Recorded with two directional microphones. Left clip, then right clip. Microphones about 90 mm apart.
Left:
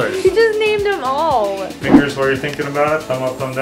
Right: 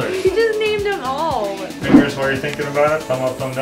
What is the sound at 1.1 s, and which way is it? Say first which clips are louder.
Music: left 7 dB; 35° left (ahead or behind).